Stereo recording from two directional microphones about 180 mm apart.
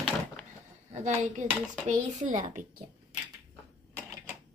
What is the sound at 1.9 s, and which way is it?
Speech, 45° right (ahead or behind).